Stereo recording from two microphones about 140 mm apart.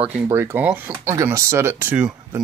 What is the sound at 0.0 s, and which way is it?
Speech, 15° right (ahead or behind).